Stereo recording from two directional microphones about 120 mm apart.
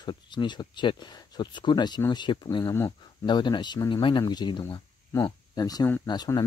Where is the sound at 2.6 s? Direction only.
20° left (ahead or behind).